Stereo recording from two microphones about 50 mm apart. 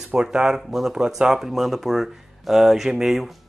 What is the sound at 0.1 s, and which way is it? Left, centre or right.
Speech, centre.